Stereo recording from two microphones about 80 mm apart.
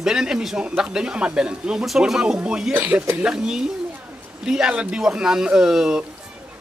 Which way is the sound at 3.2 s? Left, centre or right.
Centre.